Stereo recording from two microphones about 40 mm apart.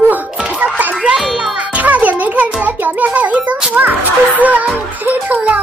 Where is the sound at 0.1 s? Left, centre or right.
Right.